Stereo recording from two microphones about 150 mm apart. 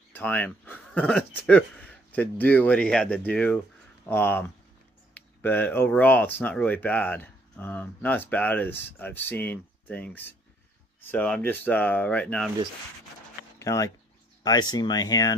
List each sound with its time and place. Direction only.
0.1 s speech: 10° left (ahead or behind)
13.6 s speech: 20° left (ahead or behind)